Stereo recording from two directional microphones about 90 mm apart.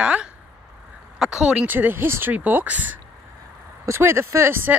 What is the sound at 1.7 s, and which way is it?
Speech, 20° right (ahead or behind).